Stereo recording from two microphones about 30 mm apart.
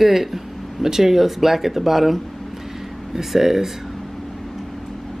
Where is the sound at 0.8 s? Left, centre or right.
Centre.